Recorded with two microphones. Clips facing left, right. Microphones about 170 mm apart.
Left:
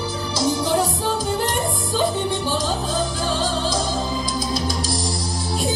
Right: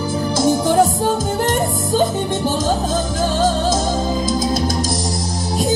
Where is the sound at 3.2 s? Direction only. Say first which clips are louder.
Right 6 dB; 45° right (ahead or behind).